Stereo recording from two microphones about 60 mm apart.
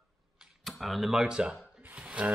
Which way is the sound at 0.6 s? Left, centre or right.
Centre.